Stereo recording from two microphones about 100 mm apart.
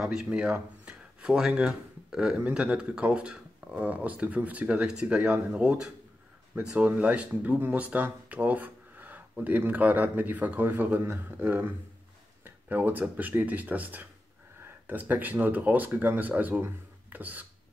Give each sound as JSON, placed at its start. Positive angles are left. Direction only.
{"t": 0.0, "sound": "speech", "side_deg": -5}